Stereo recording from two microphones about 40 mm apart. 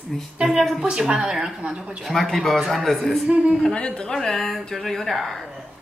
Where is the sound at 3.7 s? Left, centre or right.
Left.